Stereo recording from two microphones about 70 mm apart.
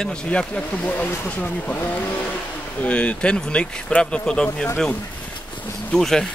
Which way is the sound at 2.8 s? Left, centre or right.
Centre.